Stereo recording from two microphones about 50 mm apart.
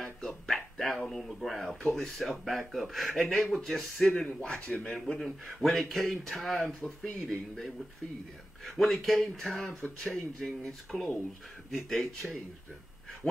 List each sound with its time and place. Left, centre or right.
0.5 s a sound: centre
1.0 s speech: centre
4.1 s speech: centre